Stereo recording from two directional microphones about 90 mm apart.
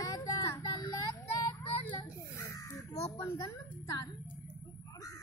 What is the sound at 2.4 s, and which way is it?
A woman's voice, 40° left (ahead or behind).